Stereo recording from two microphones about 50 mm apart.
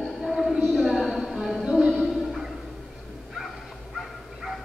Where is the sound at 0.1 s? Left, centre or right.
Centre.